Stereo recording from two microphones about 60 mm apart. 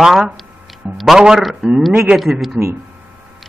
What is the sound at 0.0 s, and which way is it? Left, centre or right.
A man's voice, centre.